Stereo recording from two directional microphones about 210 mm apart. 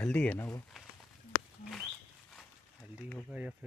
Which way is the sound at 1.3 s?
20° left (ahead or behind).